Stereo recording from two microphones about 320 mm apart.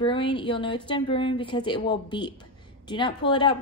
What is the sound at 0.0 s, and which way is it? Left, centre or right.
A woman's voice, centre.